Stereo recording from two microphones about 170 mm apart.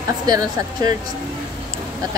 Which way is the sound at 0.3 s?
20° right (ahead or behind).